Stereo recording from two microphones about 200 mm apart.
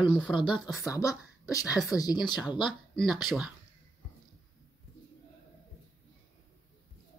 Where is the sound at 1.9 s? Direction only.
20° left (ahead or behind).